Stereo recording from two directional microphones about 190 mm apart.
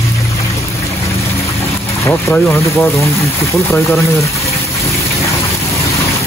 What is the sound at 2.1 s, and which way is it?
Speech, 10° left (ahead or behind).